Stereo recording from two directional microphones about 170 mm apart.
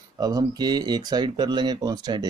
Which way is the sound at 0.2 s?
20° right (ahead or behind).